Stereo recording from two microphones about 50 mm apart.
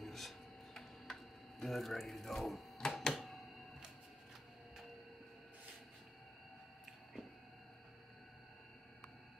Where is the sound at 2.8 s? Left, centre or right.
Centre.